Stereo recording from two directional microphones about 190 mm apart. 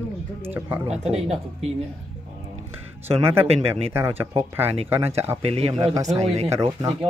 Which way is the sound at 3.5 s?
30° right (ahead or behind).